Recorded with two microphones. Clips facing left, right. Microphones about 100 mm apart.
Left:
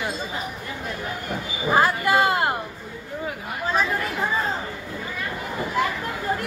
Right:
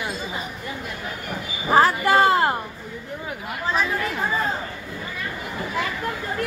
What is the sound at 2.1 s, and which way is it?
Speech, 30° right (ahead or behind).